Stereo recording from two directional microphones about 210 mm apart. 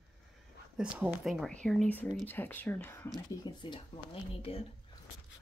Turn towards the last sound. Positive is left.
turn(degrees=30)  # may be behind; listen again after turning